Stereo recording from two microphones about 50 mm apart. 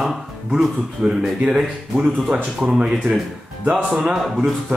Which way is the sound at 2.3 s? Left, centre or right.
Right.